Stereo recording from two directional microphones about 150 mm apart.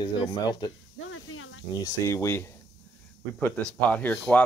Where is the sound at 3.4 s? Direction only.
5° left (ahead or behind).